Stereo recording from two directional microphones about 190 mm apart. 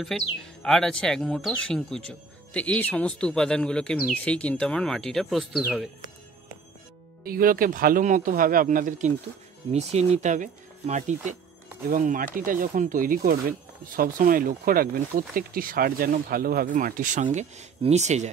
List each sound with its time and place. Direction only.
0.0 s speech: centre (ahead or behind)
7.2 s speech: 50° right (ahead or behind)